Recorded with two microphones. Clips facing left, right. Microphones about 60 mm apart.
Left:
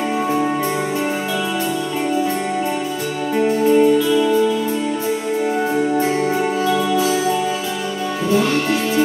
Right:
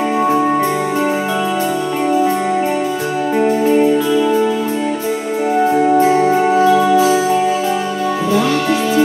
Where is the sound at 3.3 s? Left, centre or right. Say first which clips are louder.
Right 1 dB; right.